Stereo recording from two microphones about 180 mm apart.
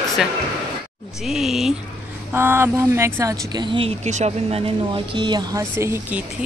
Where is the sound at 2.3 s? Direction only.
15° right (ahead or behind).